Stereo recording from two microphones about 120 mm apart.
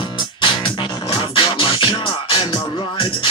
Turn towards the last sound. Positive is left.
turn(degrees=45)  # may be behind; listen again after turning